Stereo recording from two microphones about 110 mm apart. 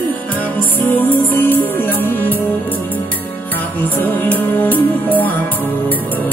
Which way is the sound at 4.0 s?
15° left (ahead or behind).